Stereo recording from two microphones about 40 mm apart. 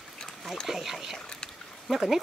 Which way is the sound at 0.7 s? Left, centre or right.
Centre.